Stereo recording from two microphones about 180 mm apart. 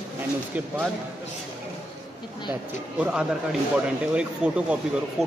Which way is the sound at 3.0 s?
5° right (ahead or behind).